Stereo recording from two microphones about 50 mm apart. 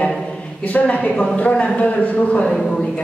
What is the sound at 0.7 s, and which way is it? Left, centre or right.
Speech, left.